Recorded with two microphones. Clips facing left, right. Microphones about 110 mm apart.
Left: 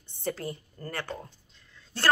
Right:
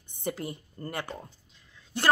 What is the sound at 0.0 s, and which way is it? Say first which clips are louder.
A woman's voice: even; 15° right (ahead or behind).